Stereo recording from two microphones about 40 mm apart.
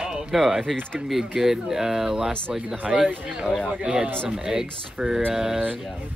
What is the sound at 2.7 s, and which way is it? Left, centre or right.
Speech, right.